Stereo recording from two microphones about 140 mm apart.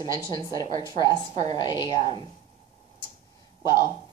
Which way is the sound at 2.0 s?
45° right (ahead or behind).